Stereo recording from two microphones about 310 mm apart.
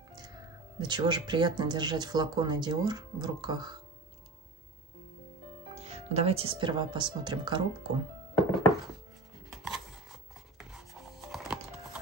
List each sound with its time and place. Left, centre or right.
0.7 s speech: centre
5.8 s speech: right
9.5 s a sound: centre
10.6 s music: centre